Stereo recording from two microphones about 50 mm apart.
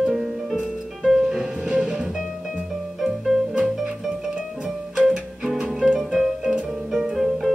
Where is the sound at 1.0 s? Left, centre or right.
Centre.